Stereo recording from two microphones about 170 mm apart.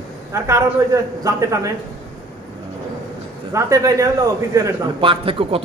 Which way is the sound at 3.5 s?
20° right (ahead or behind).